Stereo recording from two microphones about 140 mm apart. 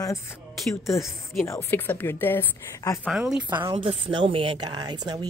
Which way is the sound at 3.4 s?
35° right (ahead or behind).